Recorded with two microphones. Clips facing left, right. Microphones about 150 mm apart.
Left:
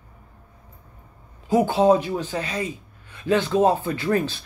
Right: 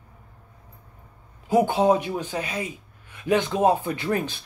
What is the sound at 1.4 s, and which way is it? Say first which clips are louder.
Speech: left 2 dB; 15° right (ahead or behind).